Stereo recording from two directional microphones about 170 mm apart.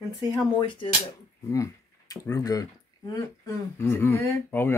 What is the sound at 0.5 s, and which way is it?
Speech, 30° left (ahead or behind).